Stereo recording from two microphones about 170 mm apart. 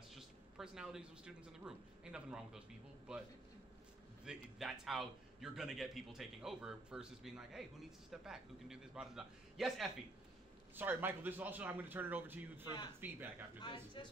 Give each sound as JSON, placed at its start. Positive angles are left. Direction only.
{"t": 0.1, "sound": "speech", "side_deg": -5}
{"t": 4.2, "sound": "a man's voice", "side_deg": -5}
{"t": 13.6, "sound": "speech", "side_deg": 25}